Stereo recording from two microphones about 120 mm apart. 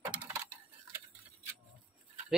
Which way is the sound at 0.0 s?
15° right (ahead or behind).